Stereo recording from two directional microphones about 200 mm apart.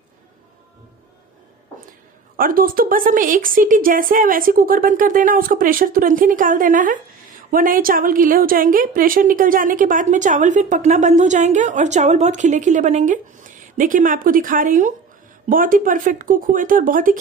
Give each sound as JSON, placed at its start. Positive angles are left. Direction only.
{"t": 2.3, "sound": "a woman's voice", "side_deg": -45}